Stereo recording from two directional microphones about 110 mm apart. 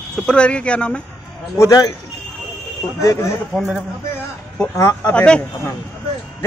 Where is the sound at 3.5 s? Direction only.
5° right (ahead or behind).